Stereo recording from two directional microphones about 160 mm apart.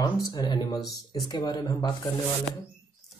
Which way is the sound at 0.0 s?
25° left (ahead or behind).